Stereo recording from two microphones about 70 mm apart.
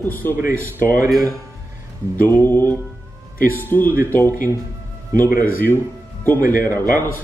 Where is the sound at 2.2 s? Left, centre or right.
Left.